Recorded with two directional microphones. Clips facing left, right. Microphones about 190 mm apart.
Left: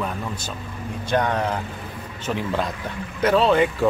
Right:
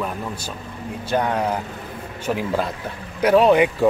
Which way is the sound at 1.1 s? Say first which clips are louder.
Right 1 dB; 10° right (ahead or behind).